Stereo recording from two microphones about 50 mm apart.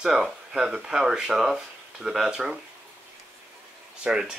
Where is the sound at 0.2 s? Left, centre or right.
Centre.